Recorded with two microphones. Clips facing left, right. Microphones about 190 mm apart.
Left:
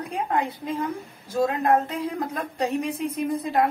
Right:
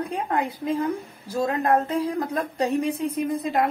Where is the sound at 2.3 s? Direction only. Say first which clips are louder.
Right 3 dB; 30° right (ahead or behind).